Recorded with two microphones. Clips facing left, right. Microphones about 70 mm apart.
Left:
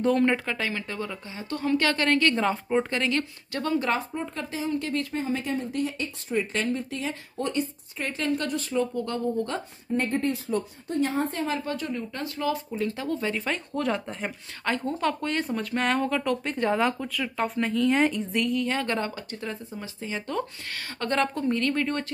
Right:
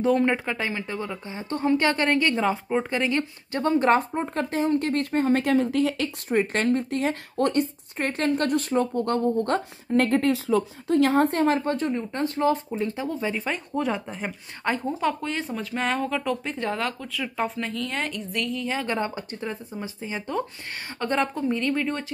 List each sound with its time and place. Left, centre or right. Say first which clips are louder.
0.0 s speech: right 1 dB; centre
2.4 s speech: right 1 dB; centre
2.9 s speech: right 2 dB; right
3.7 s speech: right 7 dB; right
6.2 s speech: right 4 dB; right
9.9 s speech: right 5 dB; right
12.7 s speech: right 1 dB; right
13.8 s speech: even; centre
17.1 s speech: even; centre
18.5 s speech: left 1 dB; centre
18.9 s speech: right 2 dB; right